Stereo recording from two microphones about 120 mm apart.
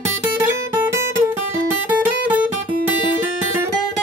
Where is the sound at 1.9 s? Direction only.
10° right (ahead or behind).